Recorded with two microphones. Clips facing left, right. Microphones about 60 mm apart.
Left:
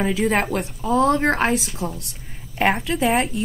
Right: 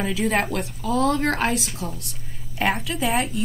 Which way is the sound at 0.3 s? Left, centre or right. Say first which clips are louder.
Left 2 dB; left.